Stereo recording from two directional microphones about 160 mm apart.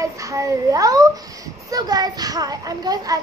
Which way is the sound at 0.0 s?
20° right (ahead or behind).